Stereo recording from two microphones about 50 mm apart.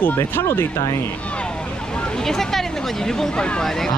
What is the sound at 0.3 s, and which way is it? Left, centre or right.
Speech, left.